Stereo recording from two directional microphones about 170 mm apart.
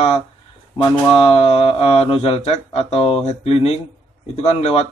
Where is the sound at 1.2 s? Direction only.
35° left (ahead or behind).